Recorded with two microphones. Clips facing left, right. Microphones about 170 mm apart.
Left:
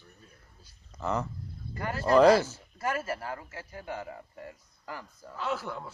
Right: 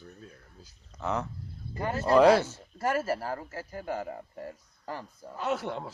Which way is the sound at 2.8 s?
40° right (ahead or behind).